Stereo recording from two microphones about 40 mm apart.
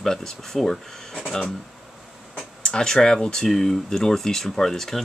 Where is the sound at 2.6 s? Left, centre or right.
Centre.